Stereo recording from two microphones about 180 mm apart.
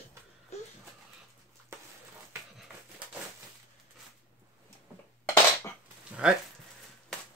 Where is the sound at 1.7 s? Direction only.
15° right (ahead or behind).